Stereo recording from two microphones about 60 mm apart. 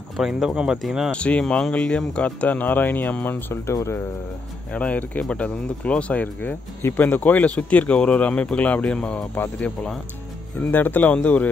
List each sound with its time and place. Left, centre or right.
0.2 s speech: centre
1.1 s speech: left
1.4 s speech: centre
1.7 s speech: left
3.6 s speech: left
4.7 s speech: left
6.8 s speech: left
7.1 s speech: left
10.7 s speech: left